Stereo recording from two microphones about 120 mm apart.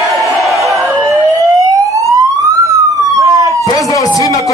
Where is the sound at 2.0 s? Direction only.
25° right (ahead or behind).